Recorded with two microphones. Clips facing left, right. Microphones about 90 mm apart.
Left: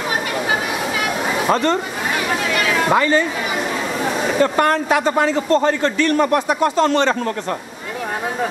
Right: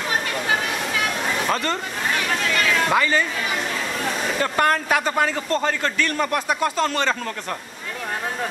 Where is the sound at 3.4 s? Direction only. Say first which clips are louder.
Left 4 dB; 10° left (ahead or behind).